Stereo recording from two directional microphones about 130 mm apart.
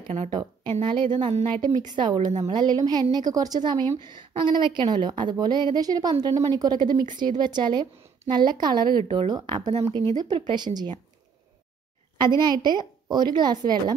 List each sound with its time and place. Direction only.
0.0 s speech: 65° right (ahead or behind)
0.3 s a woman's voice: 35° right (ahead or behind)
12.2 s a woman's voice: 35° right (ahead or behind)